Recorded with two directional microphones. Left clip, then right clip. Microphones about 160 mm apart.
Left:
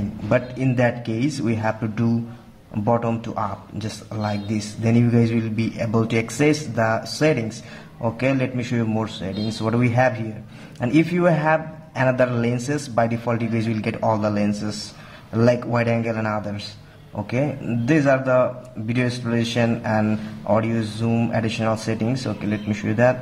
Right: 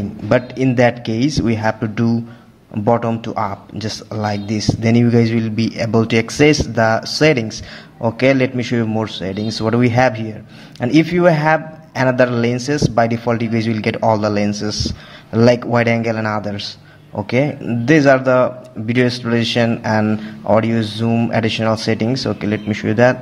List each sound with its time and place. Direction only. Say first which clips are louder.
0.3 s a man's voice: right 6 dB; 25° right (ahead or behind)